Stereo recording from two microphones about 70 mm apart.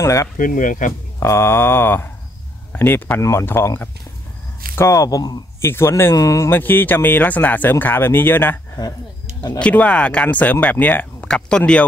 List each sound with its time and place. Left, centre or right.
0.0 s speech: left
1.2 s mantra: left
2.7 s speech: left
3.2 s speech: left
3.4 s mantra: left
4.7 s speech: left
5.6 s mantra: left
6.1 s speech: left
6.5 s speech: left
7.8 s mantra: left
8.8 s speech: left
9.6 s speech: centre